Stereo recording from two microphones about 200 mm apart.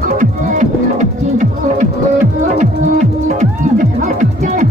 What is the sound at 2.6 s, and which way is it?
Music, 35° right (ahead or behind).